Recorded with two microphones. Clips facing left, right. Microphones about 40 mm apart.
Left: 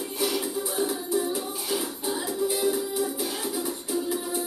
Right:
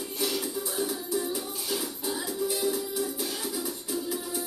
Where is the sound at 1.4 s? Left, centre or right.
Centre.